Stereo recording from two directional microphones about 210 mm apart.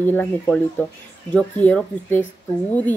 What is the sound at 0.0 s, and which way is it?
Speech, 10° left (ahead or behind).